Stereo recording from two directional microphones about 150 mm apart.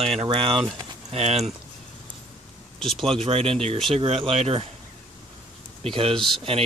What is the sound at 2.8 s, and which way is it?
Speech, centre (ahead or behind).